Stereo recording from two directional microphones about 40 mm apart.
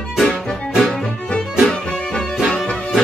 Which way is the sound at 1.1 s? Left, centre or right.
Left.